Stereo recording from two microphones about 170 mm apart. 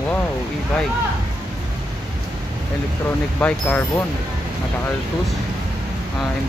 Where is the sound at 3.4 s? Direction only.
5° left (ahead or behind).